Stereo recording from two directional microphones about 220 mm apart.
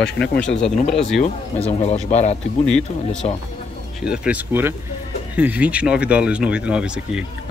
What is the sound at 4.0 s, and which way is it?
Speech, 5° right (ahead or behind).